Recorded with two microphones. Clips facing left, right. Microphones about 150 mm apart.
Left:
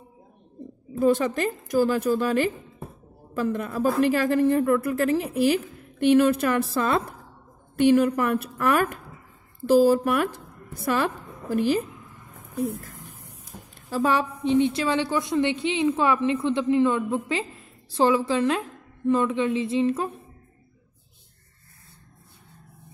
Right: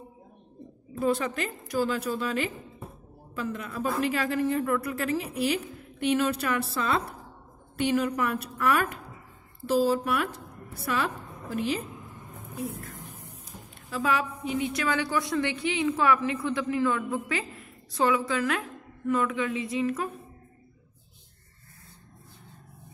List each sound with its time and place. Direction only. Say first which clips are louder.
0.9 s a woman's voice: left 6 dB; 40° left (ahead or behind)
13.8 s a woman's voice: left 4 dB; 35° left (ahead or behind)